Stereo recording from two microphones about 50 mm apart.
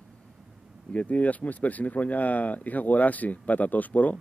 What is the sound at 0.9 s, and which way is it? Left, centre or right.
Speech, left.